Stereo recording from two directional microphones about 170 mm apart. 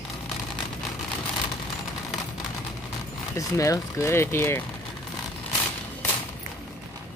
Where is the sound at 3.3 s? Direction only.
20° left (ahead or behind).